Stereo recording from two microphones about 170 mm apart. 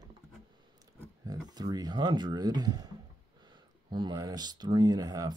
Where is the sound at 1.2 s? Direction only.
20° right (ahead or behind).